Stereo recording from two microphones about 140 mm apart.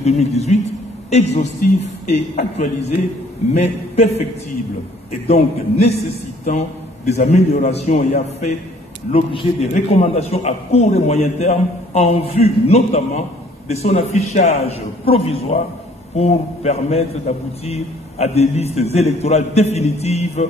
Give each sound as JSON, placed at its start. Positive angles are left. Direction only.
{"t": 0.0, "sound": "a man's voice", "side_deg": 50}
{"t": 2.5, "sound": "a man's voice", "side_deg": 50}
{"t": 5.2, "sound": "a man's voice", "side_deg": 50}
{"t": 7.1, "sound": "a man's voice", "side_deg": 50}
{"t": 9.1, "sound": "a man's voice", "side_deg": 40}
{"t": 9.8, "sound": "a man's voice", "side_deg": 55}